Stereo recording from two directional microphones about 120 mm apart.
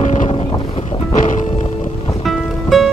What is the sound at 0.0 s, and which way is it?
Boat, 80° left.